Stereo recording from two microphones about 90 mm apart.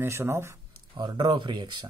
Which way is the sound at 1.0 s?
55° right (ahead or behind).